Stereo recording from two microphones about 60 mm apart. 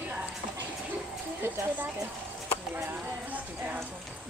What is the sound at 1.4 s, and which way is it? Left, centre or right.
Speech, right.